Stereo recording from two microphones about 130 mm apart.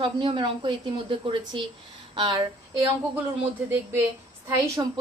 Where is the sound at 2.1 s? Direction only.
35° right (ahead or behind).